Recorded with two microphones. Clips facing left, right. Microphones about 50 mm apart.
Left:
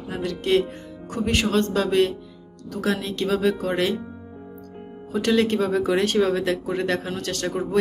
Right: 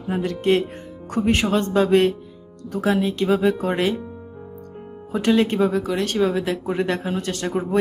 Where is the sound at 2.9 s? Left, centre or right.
Centre.